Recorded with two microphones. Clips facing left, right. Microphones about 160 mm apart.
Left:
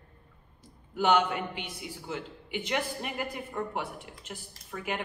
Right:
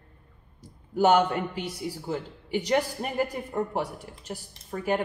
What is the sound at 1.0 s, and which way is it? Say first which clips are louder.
A man's voice: right 4 dB; 40° right (ahead or behind).